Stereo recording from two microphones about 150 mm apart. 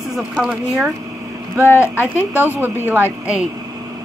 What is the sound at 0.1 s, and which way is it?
Speech, centre (ahead or behind).